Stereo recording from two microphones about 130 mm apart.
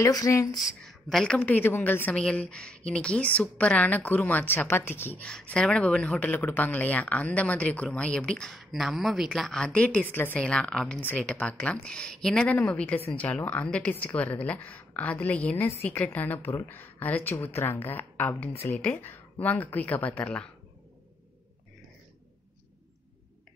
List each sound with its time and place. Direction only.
0.0 s speech: 25° left (ahead or behind)
0.6 s a woman's voice: centre (ahead or behind)